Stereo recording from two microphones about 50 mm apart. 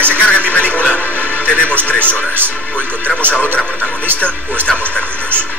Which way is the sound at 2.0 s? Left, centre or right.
Right.